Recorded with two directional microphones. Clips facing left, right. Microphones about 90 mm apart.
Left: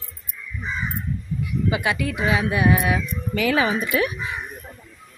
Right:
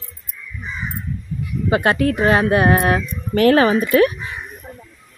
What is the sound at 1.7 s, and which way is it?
Speech, 50° right (ahead or behind).